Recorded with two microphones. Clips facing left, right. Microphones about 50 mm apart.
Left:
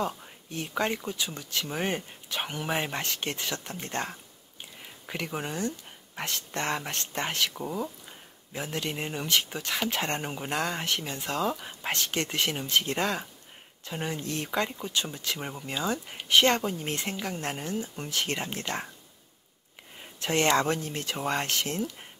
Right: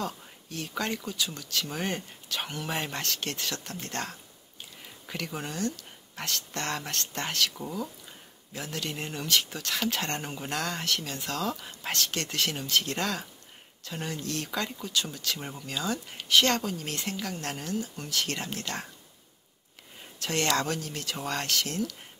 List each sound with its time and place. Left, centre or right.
0.0 s speech: left
20.0 s speech: left